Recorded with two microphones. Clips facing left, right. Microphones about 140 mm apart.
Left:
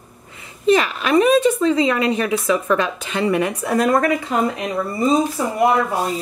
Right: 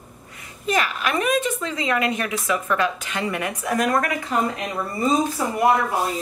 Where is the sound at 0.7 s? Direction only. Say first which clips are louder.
Left 7 dB; 30° left (ahead or behind).